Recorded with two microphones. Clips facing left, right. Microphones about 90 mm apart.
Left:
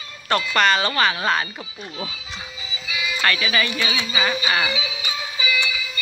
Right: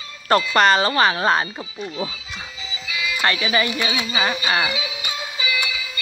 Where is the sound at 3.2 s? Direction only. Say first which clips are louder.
Right 1 dB; 25° right (ahead or behind).